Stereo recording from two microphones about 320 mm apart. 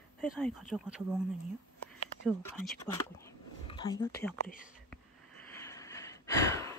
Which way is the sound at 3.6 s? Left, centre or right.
Centre.